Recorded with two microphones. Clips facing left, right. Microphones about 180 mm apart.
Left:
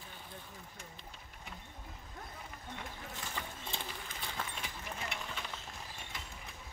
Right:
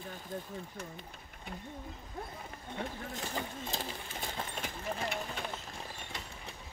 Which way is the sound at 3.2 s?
40° right (ahead or behind).